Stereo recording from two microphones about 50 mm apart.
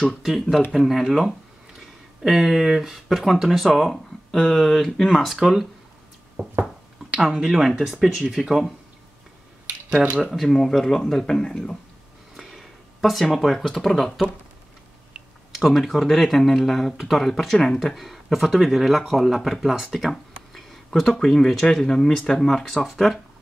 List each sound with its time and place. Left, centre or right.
0.2 s speech: centre
6.4 s a sound: right
7.2 s speech: centre
10.0 s speech: right
10.3 s speech: centre
12.4 s speech: centre
15.5 s speech: centre